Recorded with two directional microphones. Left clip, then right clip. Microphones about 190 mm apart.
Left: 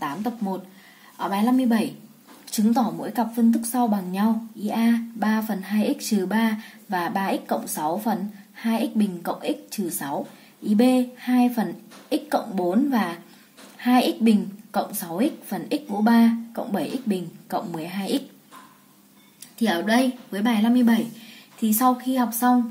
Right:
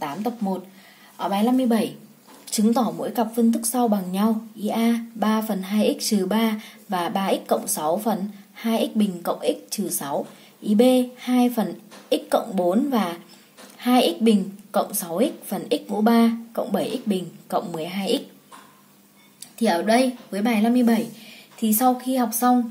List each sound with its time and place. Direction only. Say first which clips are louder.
0.0 s a sound: right 1 dB; 5° right (ahead or behind)
1.1 s speech: right 1 dB; 10° right (ahead or behind)
19.6 s a woman's voice: right 3 dB; centre (ahead or behind)